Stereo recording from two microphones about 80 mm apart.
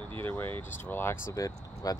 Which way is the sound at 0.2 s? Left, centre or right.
Left.